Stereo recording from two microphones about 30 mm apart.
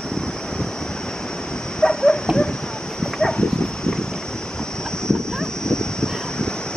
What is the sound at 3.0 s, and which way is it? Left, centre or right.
Dog, left.